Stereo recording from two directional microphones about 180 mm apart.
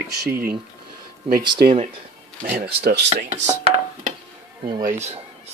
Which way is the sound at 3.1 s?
40° right (ahead or behind).